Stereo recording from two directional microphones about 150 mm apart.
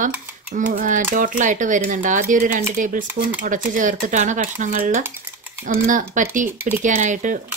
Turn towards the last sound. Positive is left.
turn(degrees=-55)  # may be behind; listen again after turning